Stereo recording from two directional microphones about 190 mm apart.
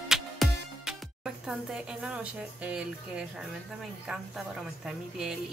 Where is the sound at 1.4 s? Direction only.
5° right (ahead or behind).